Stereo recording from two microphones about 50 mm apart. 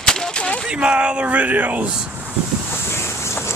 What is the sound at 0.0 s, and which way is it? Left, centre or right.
Gunshot, centre.